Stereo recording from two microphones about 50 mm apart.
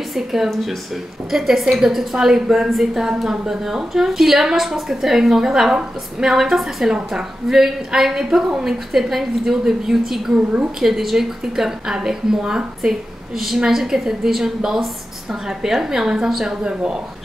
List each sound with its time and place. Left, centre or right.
0.1 s a woman's voice: centre
10.3 s a woman's voice: right
10.8 s a woman's voice: centre